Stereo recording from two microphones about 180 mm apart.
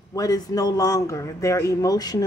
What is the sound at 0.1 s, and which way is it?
Speech, 20° left (ahead or behind).